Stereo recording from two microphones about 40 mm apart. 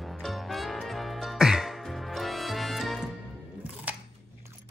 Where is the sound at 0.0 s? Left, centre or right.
Centre.